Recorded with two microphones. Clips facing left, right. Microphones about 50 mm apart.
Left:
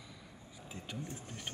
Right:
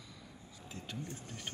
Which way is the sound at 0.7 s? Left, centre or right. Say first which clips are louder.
Even; centre.